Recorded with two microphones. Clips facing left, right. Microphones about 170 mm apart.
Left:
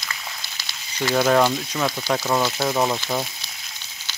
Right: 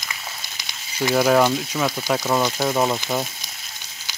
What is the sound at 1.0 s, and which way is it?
Speech, 5° right (ahead or behind).